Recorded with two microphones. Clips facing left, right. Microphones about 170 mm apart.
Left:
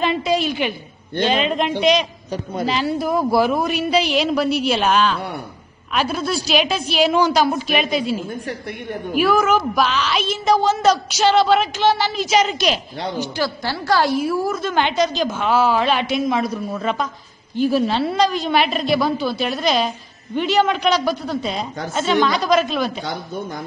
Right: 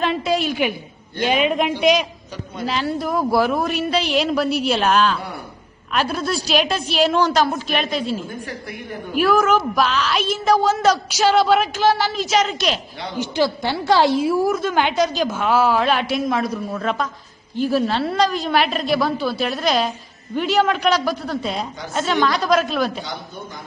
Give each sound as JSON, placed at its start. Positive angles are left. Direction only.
{"t": 0.0, "sound": "a woman's voice", "side_deg": 0}
{"t": 13.2, "sound": "a woman's voice", "side_deg": -20}
{"t": 14.5, "sound": "a woman's voice", "side_deg": -5}